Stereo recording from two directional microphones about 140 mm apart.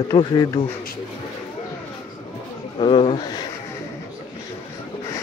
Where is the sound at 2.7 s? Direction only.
40° left (ahead or behind).